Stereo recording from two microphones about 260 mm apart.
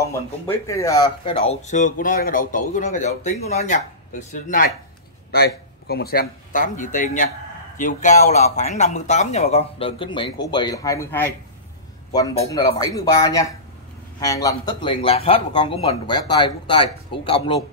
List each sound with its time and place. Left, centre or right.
0.0 s a man's voice: centre